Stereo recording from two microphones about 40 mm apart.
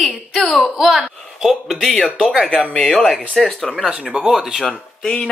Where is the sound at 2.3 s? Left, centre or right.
Centre.